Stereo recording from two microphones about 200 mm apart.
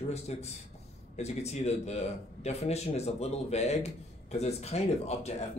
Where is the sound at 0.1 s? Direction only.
30° left (ahead or behind).